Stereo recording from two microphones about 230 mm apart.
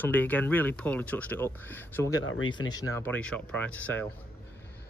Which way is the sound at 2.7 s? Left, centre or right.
Centre.